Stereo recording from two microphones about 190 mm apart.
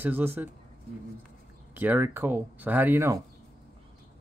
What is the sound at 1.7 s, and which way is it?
Speech, 10° right (ahead or behind).